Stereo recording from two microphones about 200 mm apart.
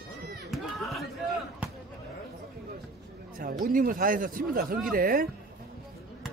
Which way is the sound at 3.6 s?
45° right (ahead or behind).